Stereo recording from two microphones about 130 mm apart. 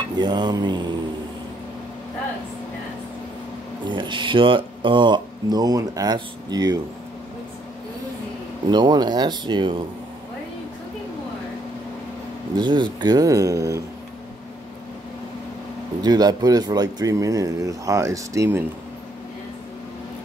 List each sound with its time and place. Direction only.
0.2 s speech: 35° right (ahead or behind)
3.8 s speech: 40° right (ahead or behind)
8.6 s speech: 35° right (ahead or behind)
12.5 s speech: 35° right (ahead or behind)
16.0 s speech: 30° right (ahead or behind)